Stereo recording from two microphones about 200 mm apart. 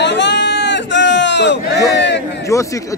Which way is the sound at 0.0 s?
60° left (ahead or behind).